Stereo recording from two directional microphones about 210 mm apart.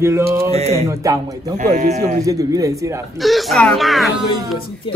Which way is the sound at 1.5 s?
35° right (ahead or behind).